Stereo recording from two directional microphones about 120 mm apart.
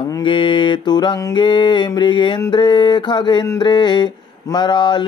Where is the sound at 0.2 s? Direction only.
45° left (ahead or behind).